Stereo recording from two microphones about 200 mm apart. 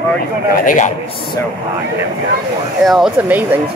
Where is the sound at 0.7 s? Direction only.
40° left (ahead or behind).